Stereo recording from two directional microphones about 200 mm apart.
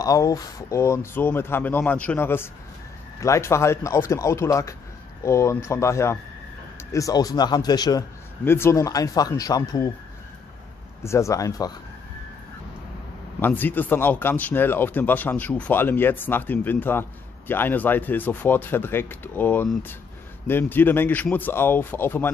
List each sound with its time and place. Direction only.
0.0 s speech: 15° left (ahead or behind)
11.0 s speech: 15° left (ahead or behind)
13.4 s speech: 10° left (ahead or behind)